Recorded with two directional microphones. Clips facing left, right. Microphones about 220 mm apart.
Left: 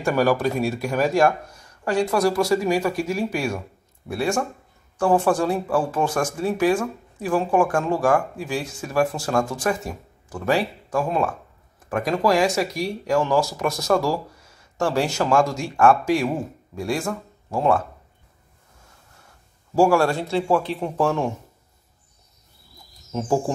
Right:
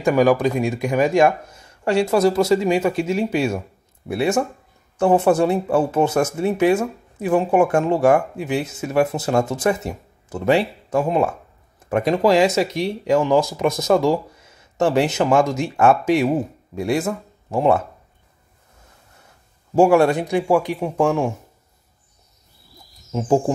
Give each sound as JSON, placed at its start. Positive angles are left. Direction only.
{"t": 0.0, "sound": "speech", "side_deg": -15}
{"t": 19.7, "sound": "speech", "side_deg": -20}
{"t": 23.1, "sound": "speech", "side_deg": -20}